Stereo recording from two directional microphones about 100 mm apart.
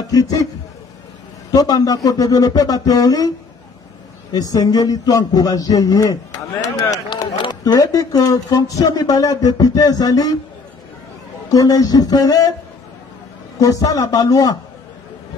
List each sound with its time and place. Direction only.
0.1 s speech: 35° left (ahead or behind)
1.5 s speech: 40° left (ahead or behind)
7.6 s speech: 40° left (ahead or behind)
11.4 s speech: 35° left (ahead or behind)
13.6 s speech: 35° left (ahead or behind)